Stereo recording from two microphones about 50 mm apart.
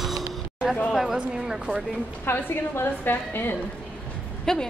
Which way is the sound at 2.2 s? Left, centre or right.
Left.